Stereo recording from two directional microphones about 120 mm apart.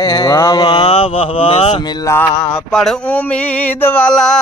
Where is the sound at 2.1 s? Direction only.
25° left (ahead or behind).